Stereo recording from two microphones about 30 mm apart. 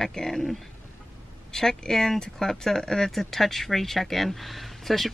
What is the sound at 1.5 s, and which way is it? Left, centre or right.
Speech, centre.